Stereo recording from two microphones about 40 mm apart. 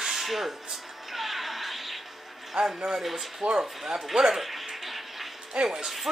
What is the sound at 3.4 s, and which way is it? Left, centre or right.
Speech, right.